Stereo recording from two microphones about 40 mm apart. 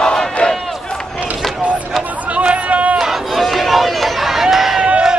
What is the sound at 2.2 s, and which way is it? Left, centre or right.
Chatter, right.